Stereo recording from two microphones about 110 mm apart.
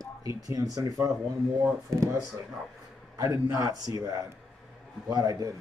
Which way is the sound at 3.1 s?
25° right (ahead or behind).